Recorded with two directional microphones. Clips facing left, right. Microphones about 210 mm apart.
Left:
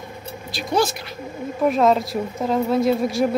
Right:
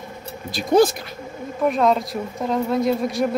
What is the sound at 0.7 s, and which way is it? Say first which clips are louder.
Speech: right 5 dB; 50° right (ahead or behind).